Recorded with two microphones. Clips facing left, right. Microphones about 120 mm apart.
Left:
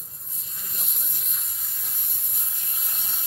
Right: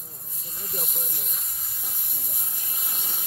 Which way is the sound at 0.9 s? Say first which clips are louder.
Right 6 dB; 50° right (ahead or behind).